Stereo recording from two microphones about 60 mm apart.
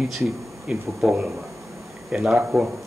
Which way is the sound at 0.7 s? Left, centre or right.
Centre.